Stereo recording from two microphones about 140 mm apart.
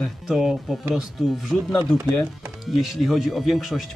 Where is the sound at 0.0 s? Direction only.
Centre (ahead or behind).